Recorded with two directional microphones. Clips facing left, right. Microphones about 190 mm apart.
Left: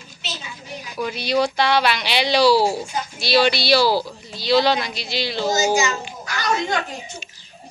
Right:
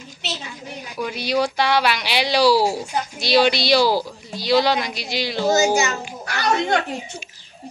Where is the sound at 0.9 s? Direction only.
10° right (ahead or behind).